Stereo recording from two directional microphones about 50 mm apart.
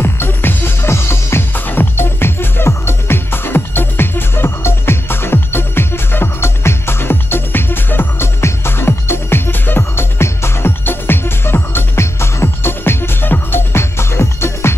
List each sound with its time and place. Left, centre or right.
0.0 s music: left
0.8 s music: left
1.5 s music: left
8.4 s music: left